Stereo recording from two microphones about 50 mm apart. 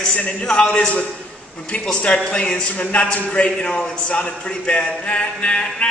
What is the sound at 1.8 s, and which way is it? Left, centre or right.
A man's voice, left.